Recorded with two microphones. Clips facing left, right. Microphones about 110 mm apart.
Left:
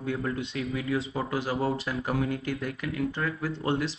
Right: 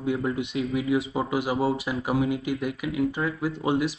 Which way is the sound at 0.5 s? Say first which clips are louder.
Right 6 dB; 15° right (ahead or behind).